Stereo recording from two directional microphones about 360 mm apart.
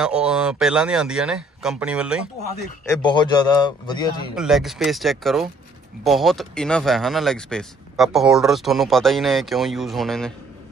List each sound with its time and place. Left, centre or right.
0.0 s speech: centre
2.8 s a man's voice: centre
4.4 s speech: centre